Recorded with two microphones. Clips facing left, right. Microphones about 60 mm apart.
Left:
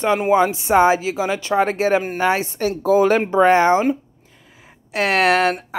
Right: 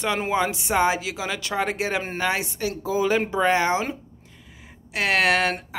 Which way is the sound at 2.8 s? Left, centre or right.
Left.